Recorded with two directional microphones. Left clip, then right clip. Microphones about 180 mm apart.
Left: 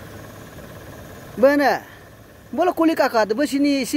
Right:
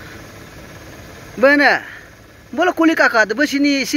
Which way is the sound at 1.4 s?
20° left (ahead or behind).